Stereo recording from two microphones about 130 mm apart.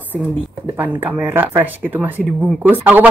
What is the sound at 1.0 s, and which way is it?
Speech, 15° right (ahead or behind).